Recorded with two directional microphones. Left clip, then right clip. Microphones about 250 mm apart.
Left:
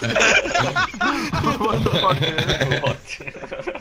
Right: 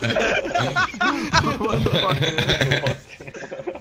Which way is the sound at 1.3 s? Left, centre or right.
Right.